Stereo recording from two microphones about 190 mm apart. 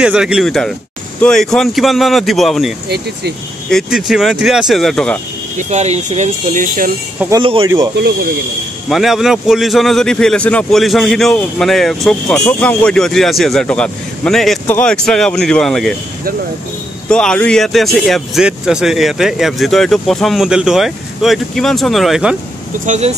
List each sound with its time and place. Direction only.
0.0 s a man's voice: 5° right (ahead or behind)
3.7 s a man's voice: centre (ahead or behind)
5.6 s speech: 40° right (ahead or behind)
7.3 s speech: 25° right (ahead or behind)
8.8 s a man's voice: centre (ahead or behind)
17.1 s a man's voice: 5° left (ahead or behind)
22.8 s speech: 35° right (ahead or behind)